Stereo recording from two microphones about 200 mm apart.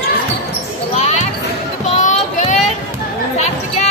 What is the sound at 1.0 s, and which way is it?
Basketball bounce, 35° left (ahead or behind).